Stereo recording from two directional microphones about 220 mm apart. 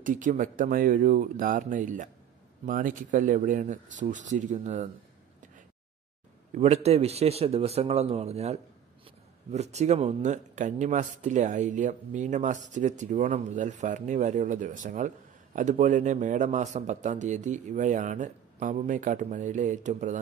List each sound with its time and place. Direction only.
0.0 s speech: 35° right (ahead or behind)
6.5 s a man's voice: 30° right (ahead or behind)